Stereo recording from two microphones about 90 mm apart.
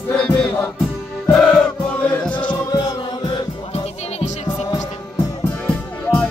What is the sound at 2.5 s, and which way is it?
Music, 50° left (ahead or behind).